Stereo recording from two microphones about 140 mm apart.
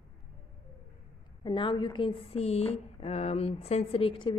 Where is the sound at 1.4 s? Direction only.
35° left (ahead or behind).